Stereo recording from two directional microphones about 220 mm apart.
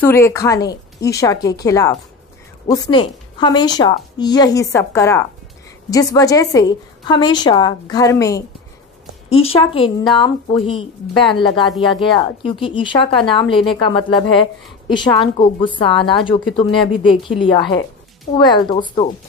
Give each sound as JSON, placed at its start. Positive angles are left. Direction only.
{"t": 0.0, "sound": "a woman's voice", "side_deg": 10}
{"t": 9.3, "sound": "speech", "side_deg": 25}